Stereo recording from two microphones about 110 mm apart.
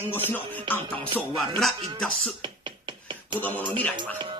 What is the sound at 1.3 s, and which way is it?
Music, centre (ahead or behind).